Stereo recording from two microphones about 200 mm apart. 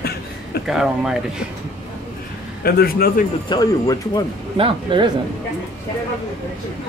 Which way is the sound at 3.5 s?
20° left (ahead or behind).